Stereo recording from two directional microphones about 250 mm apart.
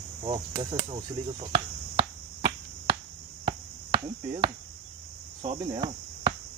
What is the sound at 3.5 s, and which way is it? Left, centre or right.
Chopping, centre.